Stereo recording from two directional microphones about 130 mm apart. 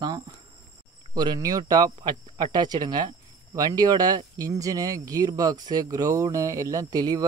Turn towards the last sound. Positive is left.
turn(degrees=-30)  # may be behind; listen again after turning